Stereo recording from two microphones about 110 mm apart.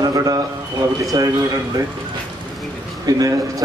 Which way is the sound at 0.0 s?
35° right (ahead or behind).